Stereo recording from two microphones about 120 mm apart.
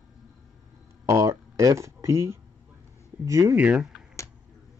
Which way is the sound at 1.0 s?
25° right (ahead or behind).